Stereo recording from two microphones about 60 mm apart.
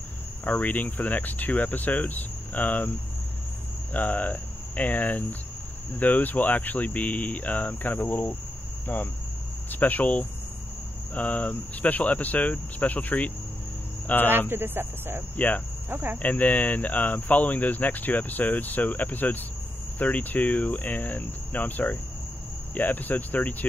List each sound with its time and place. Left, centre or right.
0.5 s speech: left
3.9 s speech: left
14.5 s speech: right
15.3 s speech: left
15.9 s speech: right
16.2 s speech: left